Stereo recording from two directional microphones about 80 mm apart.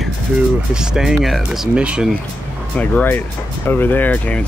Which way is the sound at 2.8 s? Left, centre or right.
Centre.